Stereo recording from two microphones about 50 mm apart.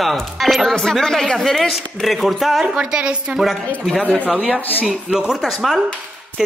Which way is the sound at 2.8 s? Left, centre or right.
Centre.